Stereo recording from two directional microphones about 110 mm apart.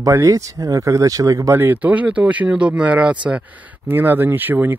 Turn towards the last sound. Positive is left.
turn(degrees=-15)  # may be behind; listen again after turning